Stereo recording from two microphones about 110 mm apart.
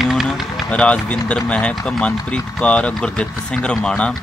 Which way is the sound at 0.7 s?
10° left (ahead or behind).